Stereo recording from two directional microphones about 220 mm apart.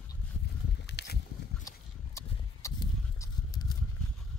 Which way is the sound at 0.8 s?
50° left (ahead or behind).